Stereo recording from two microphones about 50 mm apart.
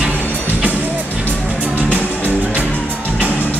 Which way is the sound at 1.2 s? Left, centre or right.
Right.